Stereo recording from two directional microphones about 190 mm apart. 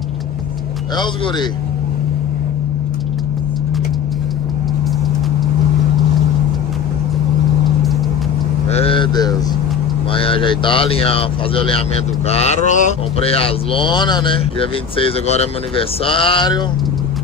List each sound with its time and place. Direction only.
8.6 s vehicle: 30° left (ahead or behind)
10.1 s speech: 30° left (ahead or behind)